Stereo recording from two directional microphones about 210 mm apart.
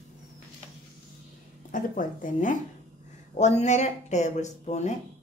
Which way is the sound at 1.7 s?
40° left (ahead or behind).